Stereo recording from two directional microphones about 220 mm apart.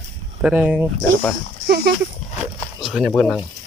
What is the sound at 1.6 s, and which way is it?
Speech, 45° right (ahead or behind).